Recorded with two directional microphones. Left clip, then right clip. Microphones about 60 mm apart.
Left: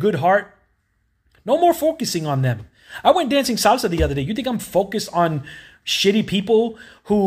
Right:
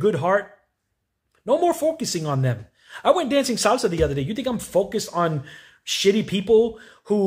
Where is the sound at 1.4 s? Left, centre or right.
Right.